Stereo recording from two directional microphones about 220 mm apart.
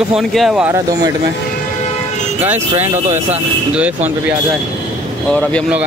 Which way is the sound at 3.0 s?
30° right (ahead or behind).